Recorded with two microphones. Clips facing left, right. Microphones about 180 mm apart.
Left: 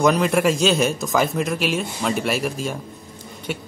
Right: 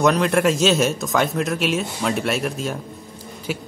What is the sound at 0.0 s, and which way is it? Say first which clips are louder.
A man's voice: even; centre (ahead or behind).